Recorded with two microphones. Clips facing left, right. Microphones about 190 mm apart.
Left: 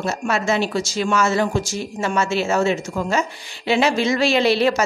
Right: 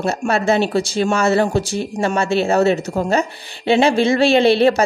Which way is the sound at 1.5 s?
60° right (ahead or behind).